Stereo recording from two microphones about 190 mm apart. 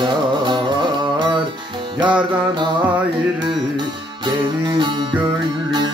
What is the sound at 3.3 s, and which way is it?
Music, 25° right (ahead or behind).